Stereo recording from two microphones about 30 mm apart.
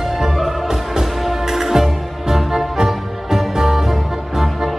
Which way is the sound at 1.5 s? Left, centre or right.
Centre.